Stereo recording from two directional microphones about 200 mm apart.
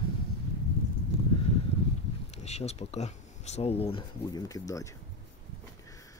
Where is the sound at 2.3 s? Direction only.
30° left (ahead or behind); by 4.8 s 15° left (ahead or behind).